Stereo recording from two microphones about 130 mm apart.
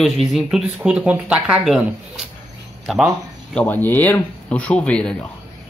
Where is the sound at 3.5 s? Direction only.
15° left (ahead or behind).